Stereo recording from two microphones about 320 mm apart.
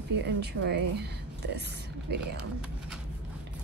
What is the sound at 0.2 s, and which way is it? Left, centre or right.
Speech, right.